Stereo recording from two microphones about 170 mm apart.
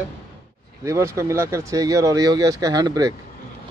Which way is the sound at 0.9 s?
15° right (ahead or behind).